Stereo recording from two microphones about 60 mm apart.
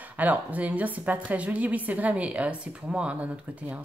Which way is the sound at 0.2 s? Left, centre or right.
Right.